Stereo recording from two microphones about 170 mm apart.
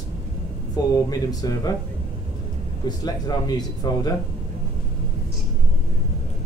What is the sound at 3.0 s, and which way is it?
A man's voice, 25° left (ahead or behind).